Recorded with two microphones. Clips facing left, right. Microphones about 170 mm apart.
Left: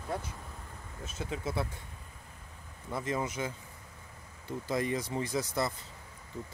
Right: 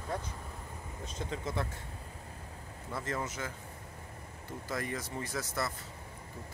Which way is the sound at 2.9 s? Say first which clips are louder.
Left 3 dB; 15° left (ahead or behind).